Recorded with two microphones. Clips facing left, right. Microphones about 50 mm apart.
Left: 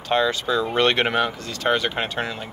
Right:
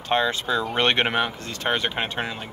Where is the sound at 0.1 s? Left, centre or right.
Right.